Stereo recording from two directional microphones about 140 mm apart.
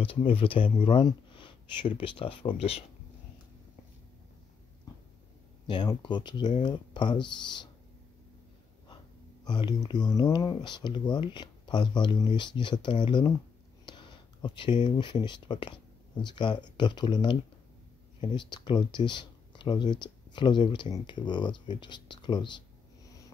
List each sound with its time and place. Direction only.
0.0 s speech: 40° left (ahead or behind)
4.9 s a sound: 25° left (ahead or behind)
5.7 s speech: 35° left (ahead or behind)
9.4 s speech: 30° left (ahead or behind)